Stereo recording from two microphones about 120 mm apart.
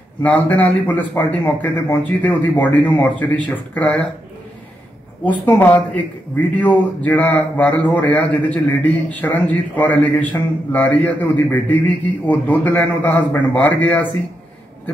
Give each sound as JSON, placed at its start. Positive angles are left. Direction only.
{"t": 0.2, "sound": "speech", "side_deg": 10}
{"t": 5.2, "sound": "speech", "side_deg": 15}